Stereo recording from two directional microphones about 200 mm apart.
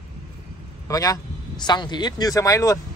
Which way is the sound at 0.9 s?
15° left (ahead or behind).